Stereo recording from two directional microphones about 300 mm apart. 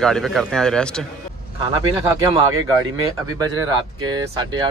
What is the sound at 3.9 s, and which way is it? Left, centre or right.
Speech, centre.